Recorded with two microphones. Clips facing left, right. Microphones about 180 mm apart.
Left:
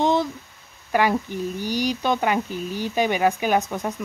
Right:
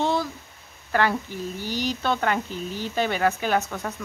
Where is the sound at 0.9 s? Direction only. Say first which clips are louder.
Left 3 dB; 15° left (ahead or behind).